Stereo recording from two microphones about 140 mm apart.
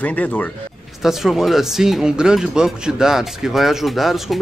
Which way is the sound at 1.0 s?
Centre (ahead or behind).